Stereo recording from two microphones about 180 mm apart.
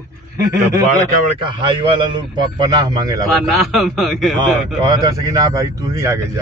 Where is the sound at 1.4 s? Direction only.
25° right (ahead or behind).